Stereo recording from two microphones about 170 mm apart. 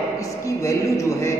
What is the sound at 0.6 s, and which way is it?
Speech, 20° left (ahead or behind).